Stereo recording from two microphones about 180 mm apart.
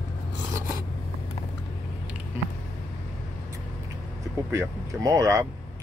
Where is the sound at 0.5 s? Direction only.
15° right (ahead or behind).